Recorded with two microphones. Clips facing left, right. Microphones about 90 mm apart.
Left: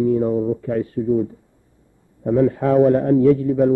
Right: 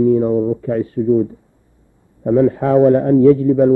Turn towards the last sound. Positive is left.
turn(degrees=-40)  # may be behind; listen again after turning